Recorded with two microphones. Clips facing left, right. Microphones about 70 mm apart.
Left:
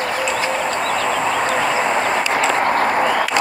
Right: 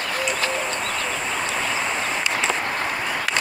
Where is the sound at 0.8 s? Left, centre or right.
Left.